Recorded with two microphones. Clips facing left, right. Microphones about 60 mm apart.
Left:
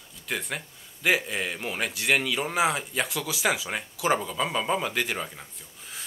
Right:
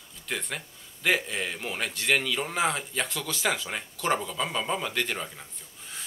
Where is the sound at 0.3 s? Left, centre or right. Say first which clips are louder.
Left 2 dB; centre.